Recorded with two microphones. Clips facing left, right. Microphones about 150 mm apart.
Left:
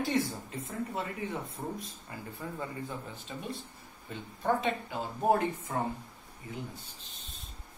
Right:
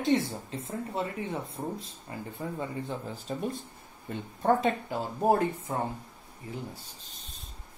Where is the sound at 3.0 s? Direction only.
40° right (ahead or behind).